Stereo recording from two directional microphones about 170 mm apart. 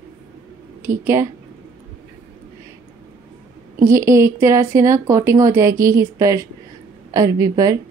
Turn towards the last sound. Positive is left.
turn(degrees=-20)  # may be behind; listen again after turning